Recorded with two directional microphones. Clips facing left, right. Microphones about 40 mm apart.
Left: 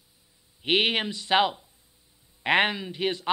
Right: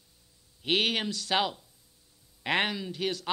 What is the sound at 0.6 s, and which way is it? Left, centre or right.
Speech, left.